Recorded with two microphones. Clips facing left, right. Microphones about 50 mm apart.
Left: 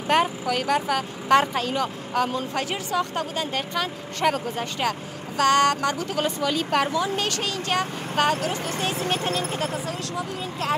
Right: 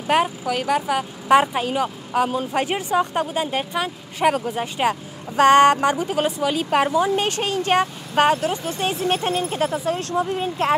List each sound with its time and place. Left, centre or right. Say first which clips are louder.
0.0 s speech: right 2 dB; centre
5.3 s speech: right 6 dB; right